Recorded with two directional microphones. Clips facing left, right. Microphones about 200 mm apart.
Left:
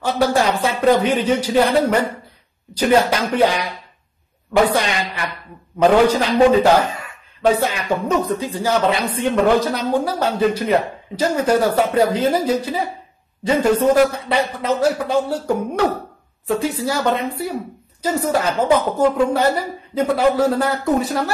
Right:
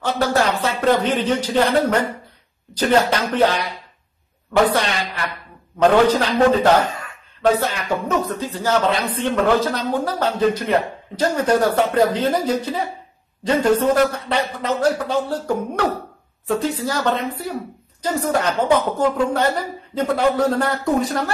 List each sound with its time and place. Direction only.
0.0 s a man's voice: 10° left (ahead or behind)
4.6 s a man's voice: 10° left (ahead or behind)